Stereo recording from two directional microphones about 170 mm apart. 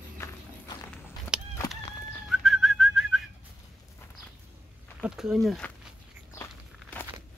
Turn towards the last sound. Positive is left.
turn(degrees=15)  # may be behind; listen again after turning